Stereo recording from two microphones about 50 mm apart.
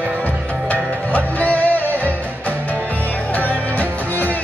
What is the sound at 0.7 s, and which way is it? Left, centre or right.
Music, left.